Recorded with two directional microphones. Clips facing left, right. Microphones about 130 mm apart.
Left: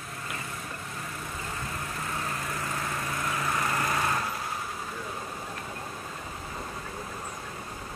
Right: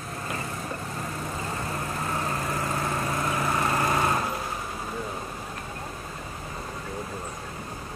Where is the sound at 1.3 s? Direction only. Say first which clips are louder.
Right 4 dB; 35° right (ahead or behind).